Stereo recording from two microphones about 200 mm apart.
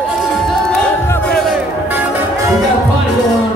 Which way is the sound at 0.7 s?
5° left (ahead or behind).